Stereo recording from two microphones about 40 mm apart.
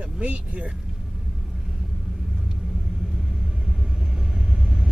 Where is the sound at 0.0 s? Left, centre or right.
Right.